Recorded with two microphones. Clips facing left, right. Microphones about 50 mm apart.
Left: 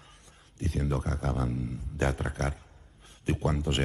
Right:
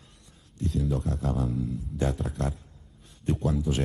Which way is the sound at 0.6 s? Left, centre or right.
Left.